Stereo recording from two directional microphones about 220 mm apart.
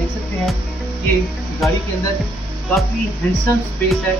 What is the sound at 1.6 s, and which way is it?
Speech, centre (ahead or behind).